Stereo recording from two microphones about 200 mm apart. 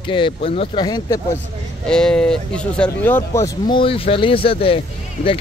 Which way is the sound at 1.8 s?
5° left (ahead or behind).